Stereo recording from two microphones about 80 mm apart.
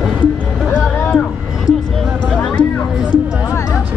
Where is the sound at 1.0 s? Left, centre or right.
Centre.